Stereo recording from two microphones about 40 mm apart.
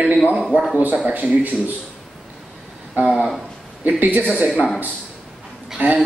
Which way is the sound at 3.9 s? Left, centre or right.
Right.